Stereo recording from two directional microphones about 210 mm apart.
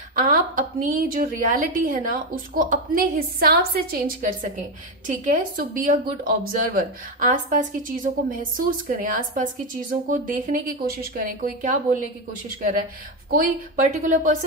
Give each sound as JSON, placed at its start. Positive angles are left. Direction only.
{"t": 0.1, "sound": "speech", "side_deg": -40}
{"t": 14.0, "sound": "speech", "side_deg": -35}